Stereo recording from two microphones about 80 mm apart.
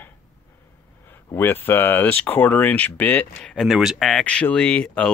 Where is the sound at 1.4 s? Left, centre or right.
Left.